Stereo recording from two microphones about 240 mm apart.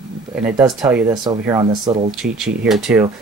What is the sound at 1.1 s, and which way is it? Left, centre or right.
Speech, centre.